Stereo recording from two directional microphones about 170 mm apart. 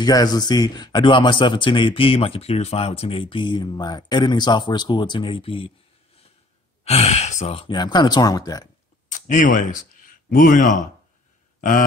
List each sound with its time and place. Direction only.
0.0 s speech: 25° left (ahead or behind)
6.8 s speech: 35° left (ahead or behind); by 8.6 s 20° left (ahead or behind)
9.1 s speech: 50° left (ahead or behind)